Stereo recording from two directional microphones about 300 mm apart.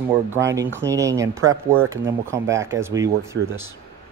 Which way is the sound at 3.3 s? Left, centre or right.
Right.